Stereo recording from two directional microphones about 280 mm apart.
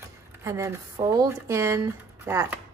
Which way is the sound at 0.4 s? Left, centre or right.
Centre.